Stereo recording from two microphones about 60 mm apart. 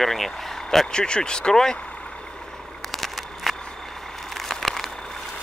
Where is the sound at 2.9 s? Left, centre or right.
Centre.